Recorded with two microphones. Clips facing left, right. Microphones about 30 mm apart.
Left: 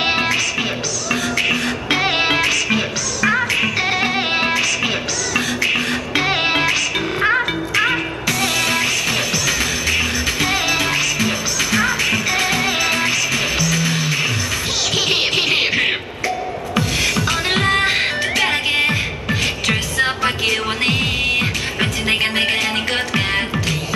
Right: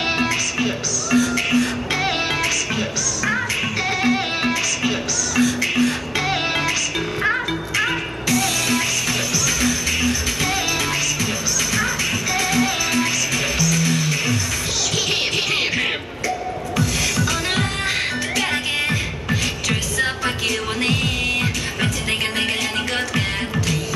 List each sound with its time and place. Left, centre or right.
0.0 s music: left